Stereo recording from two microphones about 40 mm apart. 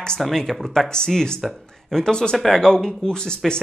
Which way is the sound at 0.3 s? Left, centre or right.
Centre.